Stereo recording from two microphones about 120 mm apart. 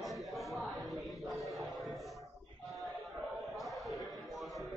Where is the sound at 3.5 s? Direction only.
Centre (ahead or behind).